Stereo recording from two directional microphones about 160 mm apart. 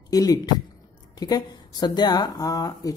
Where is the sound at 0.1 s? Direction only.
20° left (ahead or behind).